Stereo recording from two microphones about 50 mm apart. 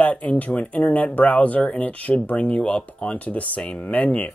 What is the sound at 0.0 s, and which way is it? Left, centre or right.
Speech, left.